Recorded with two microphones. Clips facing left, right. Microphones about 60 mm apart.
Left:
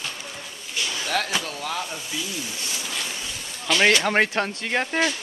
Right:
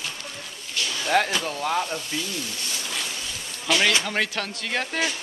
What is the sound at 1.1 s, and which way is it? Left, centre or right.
Speech, right.